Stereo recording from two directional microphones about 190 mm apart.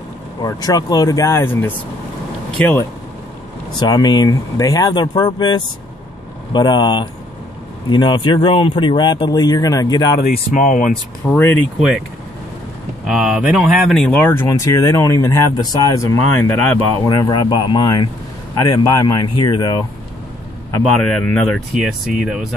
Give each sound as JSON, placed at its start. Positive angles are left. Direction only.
{"t": 0.4, "sound": "speech", "side_deg": 20}
{"t": 10.2, "sound": "speech", "side_deg": 45}
{"t": 11.2, "sound": "speech", "side_deg": 10}
{"t": 13.0, "sound": "speech", "side_deg": 0}
{"t": 20.7, "sound": "speech", "side_deg": 5}